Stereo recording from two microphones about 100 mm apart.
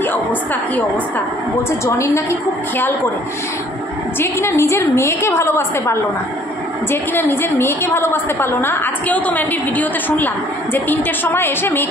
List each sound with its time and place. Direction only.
1.9 s a woman's voice: 30° left (ahead or behind)
4.2 s a woman's voice: 25° left (ahead or behind)